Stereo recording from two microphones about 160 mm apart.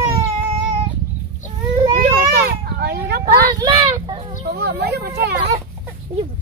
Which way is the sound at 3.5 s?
30° right (ahead or behind).